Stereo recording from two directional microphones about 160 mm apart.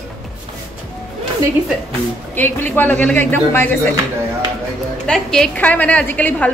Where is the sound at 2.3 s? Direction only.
10° left (ahead or behind).